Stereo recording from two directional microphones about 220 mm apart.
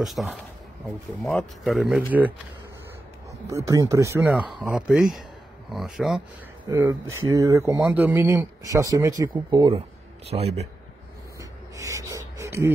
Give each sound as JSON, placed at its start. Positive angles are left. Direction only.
{"t": 0.0, "sound": "speech", "side_deg": 0}
{"t": 3.3, "sound": "a man's voice", "side_deg": -15}
{"t": 11.3, "sound": "a sound", "side_deg": -15}